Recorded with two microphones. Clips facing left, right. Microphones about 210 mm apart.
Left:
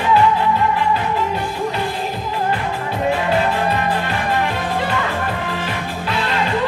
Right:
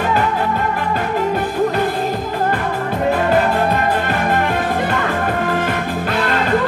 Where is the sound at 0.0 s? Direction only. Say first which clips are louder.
Left 2 dB; 45° right (ahead or behind).